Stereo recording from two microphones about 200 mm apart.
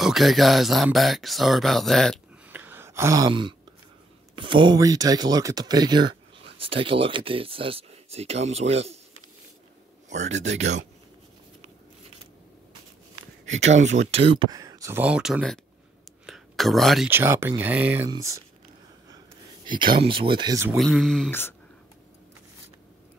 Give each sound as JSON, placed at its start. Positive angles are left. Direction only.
{"t": 0.0, "sound": "speech", "side_deg": 0}
{"t": 2.4, "sound": "a sound", "side_deg": -10}
{"t": 4.4, "sound": "speech", "side_deg": -25}
{"t": 10.0, "sound": "a sound", "side_deg": -35}
{"t": 13.7, "sound": "speech", "side_deg": -35}
{"t": 16.3, "sound": "whispering", "side_deg": 0}
{"t": 17.1, "sound": "speech", "side_deg": -10}
{"t": 19.0, "sound": "a sound", "side_deg": -20}
{"t": 20.6, "sound": "speech", "side_deg": 0}